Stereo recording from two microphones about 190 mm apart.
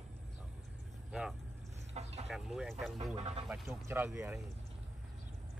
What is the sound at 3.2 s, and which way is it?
Speech, 35° right (ahead or behind).